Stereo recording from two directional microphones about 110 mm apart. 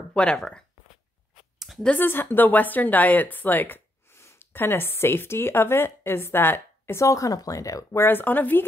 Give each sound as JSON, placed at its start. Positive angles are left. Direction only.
{"t": 0.1, "sound": "speech", "side_deg": 10}
{"t": 1.6, "sound": "a sound", "side_deg": 0}
{"t": 1.9, "sound": "a woman's voice", "side_deg": 20}